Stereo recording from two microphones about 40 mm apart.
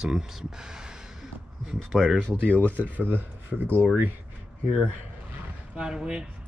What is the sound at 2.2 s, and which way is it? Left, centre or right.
Speech, left.